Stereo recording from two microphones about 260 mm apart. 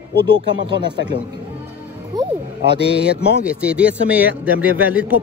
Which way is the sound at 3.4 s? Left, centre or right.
Centre.